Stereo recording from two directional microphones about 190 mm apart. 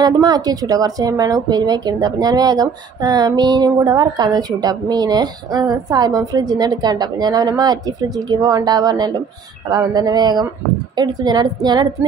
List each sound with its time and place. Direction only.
0.0 s speech: 20° right (ahead or behind)